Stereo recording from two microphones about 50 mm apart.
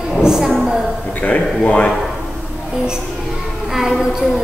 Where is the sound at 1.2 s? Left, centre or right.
Left.